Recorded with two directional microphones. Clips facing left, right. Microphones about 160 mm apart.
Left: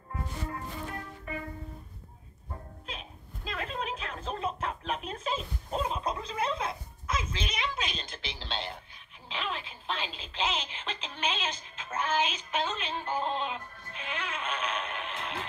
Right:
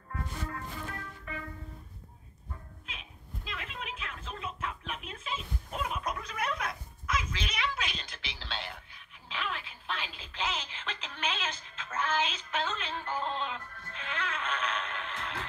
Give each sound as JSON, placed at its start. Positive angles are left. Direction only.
{"t": 0.1, "sound": "music", "side_deg": 25}
{"t": 2.5, "sound": "a sound", "side_deg": 40}
{"t": 9.3, "sound": "radio", "side_deg": 25}